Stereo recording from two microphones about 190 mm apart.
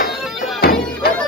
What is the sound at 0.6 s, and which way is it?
Bagpipes, 55° left (ahead or behind).